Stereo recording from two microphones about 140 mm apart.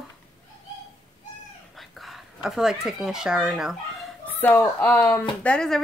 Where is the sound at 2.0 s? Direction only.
Centre (ahead or behind).